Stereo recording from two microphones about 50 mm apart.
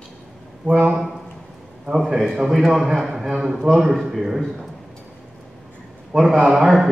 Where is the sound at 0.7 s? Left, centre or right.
Centre.